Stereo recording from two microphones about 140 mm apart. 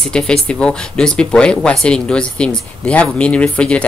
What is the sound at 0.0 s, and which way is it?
A woman's voice, 5° left (ahead or behind).